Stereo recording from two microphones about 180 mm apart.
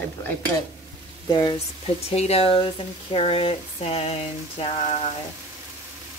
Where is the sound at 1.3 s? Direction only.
25° left (ahead or behind).